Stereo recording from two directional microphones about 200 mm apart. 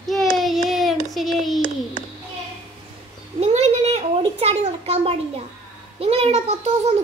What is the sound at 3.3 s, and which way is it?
A child's voice, 30° right (ahead or behind).